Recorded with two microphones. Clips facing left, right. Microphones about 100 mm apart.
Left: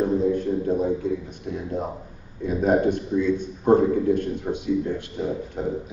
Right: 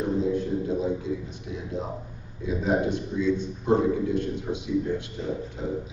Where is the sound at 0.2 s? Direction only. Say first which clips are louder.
Left 3 dB; 50° left (ahead or behind).